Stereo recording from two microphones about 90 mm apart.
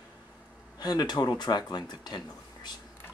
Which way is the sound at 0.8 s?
50° left (ahead or behind).